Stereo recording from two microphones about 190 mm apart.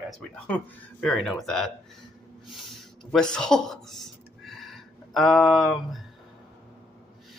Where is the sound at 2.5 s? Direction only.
Centre (ahead or behind).